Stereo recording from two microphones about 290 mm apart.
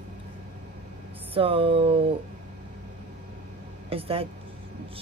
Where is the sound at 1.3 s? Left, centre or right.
Centre.